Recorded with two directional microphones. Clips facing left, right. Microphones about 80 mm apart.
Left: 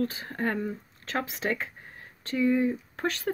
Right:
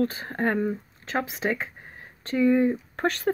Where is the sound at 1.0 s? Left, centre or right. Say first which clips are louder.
Right 3 dB; centre.